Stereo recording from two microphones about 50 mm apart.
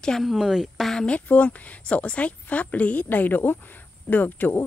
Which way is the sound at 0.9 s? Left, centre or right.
Centre.